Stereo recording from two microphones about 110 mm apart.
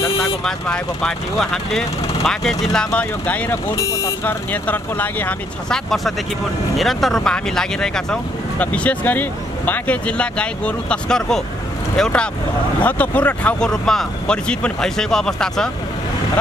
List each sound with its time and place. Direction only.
0.4 s speech: 5° left (ahead or behind)
6.8 s speech: centre (ahead or behind)